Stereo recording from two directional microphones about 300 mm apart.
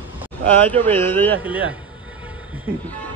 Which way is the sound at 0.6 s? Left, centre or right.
Centre.